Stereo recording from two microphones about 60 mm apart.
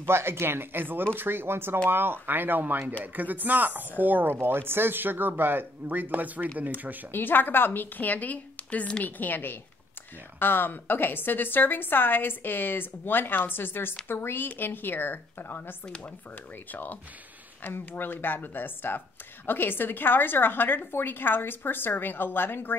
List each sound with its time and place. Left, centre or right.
0.0 s speech: right
7.1 s speech: left; by 9.0 s centre
9.0 s speech: left
17.6 s speech: left